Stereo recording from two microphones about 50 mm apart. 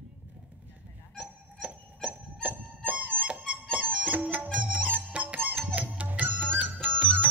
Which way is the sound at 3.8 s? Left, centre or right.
Centre.